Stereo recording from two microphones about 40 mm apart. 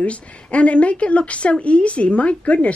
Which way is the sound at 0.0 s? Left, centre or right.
Left.